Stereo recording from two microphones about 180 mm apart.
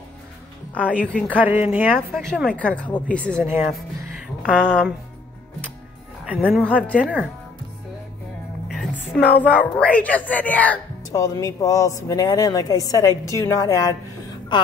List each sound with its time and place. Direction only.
0.9 s a woman's voice: 5° left (ahead or behind)
1.3 s speech: 10° right (ahead or behind)
2.0 s a woman's voice: centre (ahead or behind)
6.2 s a woman's voice: 5° right (ahead or behind)
8.6 s a woman's voice: 5° left (ahead or behind); by 14.7 s 25° left (ahead or behind)